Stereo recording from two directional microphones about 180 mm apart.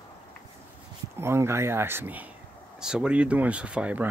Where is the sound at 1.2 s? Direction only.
15° right (ahead or behind).